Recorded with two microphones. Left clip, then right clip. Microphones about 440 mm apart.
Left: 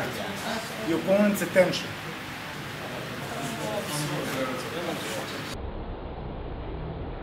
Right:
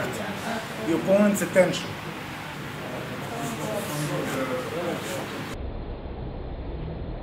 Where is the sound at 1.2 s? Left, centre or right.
Centre.